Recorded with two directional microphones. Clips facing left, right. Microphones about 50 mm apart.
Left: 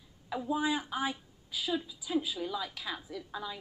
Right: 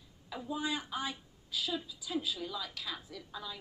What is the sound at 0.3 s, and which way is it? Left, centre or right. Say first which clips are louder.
A woman's voice: left 5 dB; centre.